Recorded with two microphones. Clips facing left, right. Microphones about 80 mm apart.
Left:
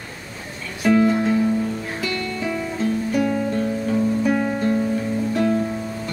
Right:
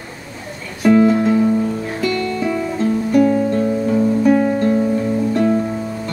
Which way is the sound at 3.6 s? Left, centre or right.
Centre.